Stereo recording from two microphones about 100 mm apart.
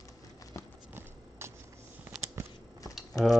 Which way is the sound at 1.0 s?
25° right (ahead or behind).